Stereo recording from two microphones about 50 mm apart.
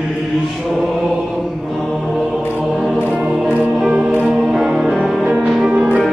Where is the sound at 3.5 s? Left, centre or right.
Centre.